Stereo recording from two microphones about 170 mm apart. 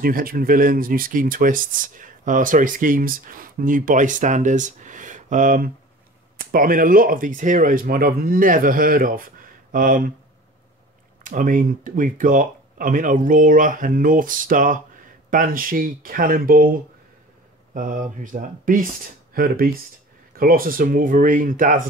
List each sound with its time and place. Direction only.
0.0 s speech: 60° right (ahead or behind)
11.2 s speech: 50° right (ahead or behind)
17.7 s speech: 50° right (ahead or behind)